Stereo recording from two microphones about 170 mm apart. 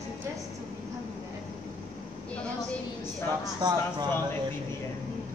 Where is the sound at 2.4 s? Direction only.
5° left (ahead or behind).